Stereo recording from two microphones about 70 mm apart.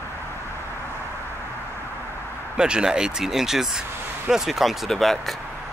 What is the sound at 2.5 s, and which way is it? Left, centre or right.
Speech, centre.